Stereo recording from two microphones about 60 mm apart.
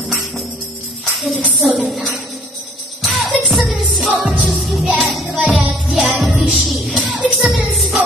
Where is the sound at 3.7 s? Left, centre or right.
Centre.